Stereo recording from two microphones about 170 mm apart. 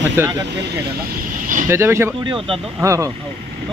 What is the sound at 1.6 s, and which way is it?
A man's voice, 15° right (ahead or behind).